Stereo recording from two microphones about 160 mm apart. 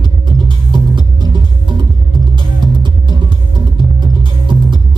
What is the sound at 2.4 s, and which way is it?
Music, 30° right (ahead or behind).